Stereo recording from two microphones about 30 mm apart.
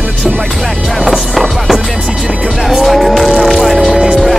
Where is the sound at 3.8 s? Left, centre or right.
Right.